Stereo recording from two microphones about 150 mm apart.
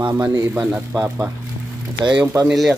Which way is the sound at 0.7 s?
15° right (ahead or behind).